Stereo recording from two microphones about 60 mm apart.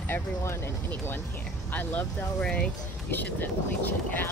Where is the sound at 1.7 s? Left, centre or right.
Left.